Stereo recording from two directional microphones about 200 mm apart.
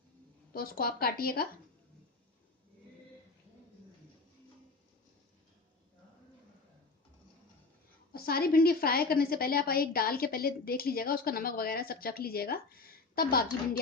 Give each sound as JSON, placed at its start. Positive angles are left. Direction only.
{"t": 0.5, "sound": "a woman's voice", "side_deg": 50}
{"t": 8.1, "sound": "a woman's voice", "side_deg": 50}